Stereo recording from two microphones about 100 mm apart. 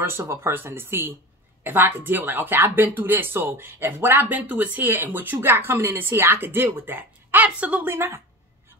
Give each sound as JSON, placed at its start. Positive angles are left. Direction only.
{"t": 0.0, "sound": "speech", "side_deg": -25}
{"t": 7.9, "sound": "speech", "side_deg": -25}